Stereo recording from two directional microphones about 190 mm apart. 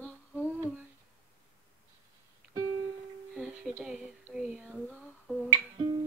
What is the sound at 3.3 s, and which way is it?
Speech, 5° right (ahead or behind).